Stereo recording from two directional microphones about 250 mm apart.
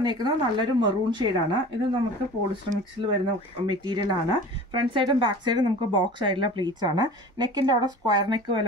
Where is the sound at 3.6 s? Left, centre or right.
Centre.